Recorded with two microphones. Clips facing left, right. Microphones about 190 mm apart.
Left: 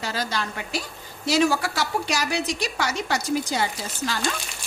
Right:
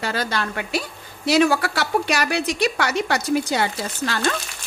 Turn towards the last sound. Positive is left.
turn(degrees=-65)  # may be behind; listen again after turning